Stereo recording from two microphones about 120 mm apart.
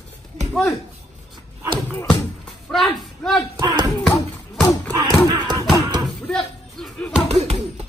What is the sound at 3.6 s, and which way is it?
Speech, 35° right (ahead or behind).